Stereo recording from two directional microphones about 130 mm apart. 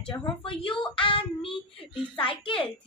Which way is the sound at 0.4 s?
45° left (ahead or behind).